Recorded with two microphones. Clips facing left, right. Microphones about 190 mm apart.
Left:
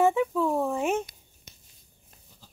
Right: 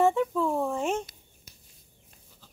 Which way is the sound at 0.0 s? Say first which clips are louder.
Left 1 dB; 5° left (ahead or behind).